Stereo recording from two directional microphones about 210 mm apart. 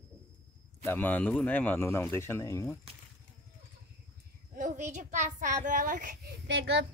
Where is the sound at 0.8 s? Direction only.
10° left (ahead or behind).